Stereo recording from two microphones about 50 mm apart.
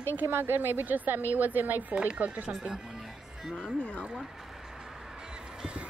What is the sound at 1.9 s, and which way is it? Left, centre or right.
Speech, right.